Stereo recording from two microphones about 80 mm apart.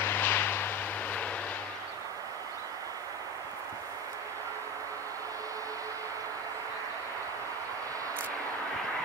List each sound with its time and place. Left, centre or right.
0.0 s vehicle: left